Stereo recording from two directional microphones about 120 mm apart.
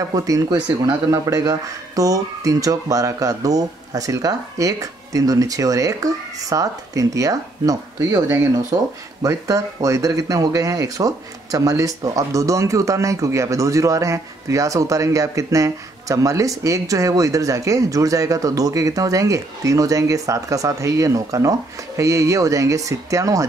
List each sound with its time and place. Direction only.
0.1 s speech: 30° right (ahead or behind)